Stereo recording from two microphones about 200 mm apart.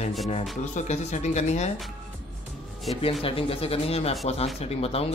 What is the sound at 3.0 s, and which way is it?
Speech, 30° left (ahead or behind).